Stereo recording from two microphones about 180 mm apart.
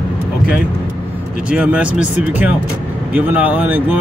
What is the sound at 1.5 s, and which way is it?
Speech, 5° right (ahead or behind).